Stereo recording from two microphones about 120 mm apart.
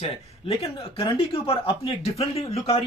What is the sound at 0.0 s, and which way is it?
Speech, 55° left (ahead or behind).